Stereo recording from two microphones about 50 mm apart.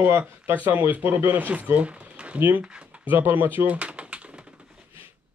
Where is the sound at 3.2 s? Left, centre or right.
Right.